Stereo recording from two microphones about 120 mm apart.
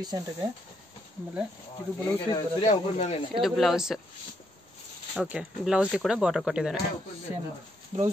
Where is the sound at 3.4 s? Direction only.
Centre (ahead or behind).